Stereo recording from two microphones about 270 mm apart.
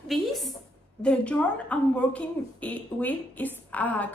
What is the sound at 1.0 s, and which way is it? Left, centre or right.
A woman's voice, centre.